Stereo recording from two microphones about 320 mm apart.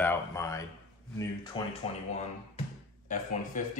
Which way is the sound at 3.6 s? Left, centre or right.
Left.